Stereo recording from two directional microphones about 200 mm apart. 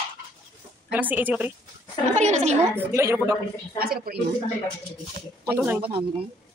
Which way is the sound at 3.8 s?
50° right (ahead or behind).